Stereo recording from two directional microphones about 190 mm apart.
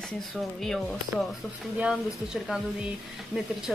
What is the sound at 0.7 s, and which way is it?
Speech, centre (ahead or behind).